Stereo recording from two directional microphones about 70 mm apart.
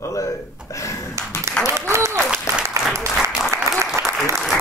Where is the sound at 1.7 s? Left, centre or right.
Right.